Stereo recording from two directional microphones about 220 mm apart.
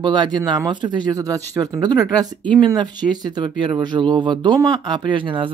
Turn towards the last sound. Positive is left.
turn(degrees=-25)  # may be behind; listen again after turning